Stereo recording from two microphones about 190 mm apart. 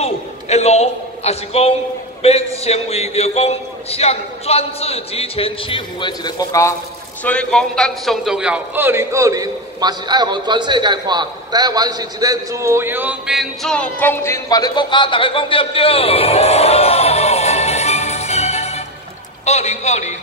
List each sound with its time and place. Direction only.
0.0 s a man's voice: 35° left (ahead or behind); by 6.7 s 20° left (ahead or behind)
7.2 s a man's voice: 5° left (ahead or behind); by 20.2 s 35° left (ahead or behind)